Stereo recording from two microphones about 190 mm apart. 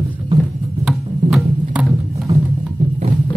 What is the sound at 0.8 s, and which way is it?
Music, centre (ahead or behind).